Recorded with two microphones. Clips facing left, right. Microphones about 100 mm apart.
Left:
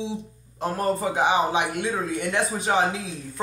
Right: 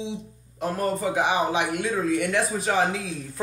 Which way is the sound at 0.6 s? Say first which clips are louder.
Left 1 dB; 30° left (ahead or behind).